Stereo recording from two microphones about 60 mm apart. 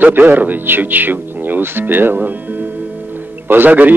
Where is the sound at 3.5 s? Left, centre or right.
Right.